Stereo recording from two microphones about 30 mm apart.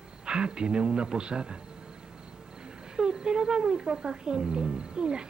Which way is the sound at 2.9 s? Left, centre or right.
Right.